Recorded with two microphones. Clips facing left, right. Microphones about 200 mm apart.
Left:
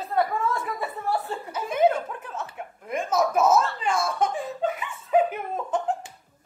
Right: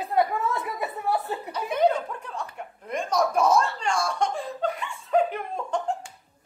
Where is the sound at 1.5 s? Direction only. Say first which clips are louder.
Left 1 dB; 5° left (ahead or behind).